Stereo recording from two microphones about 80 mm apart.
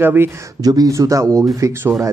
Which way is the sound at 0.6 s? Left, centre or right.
Right.